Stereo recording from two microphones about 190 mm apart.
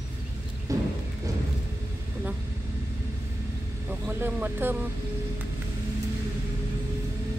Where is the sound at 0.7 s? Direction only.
15° right (ahead or behind).